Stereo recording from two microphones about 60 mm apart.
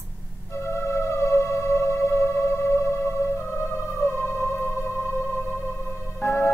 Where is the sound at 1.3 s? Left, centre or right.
Left.